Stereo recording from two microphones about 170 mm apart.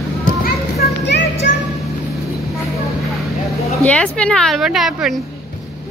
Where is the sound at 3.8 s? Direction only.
5° left (ahead or behind).